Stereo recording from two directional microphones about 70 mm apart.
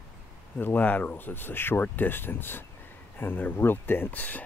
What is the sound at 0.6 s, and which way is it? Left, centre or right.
Speech, left.